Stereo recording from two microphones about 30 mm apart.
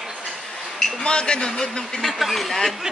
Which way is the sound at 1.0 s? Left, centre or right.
Left.